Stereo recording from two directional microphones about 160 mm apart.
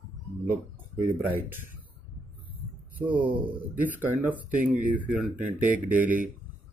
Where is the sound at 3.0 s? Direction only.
10° right (ahead or behind).